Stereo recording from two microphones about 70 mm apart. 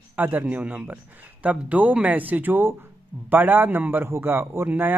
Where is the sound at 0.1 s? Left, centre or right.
Right.